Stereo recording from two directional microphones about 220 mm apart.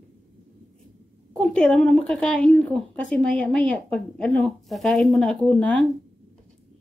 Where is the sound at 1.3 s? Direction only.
5° left (ahead or behind).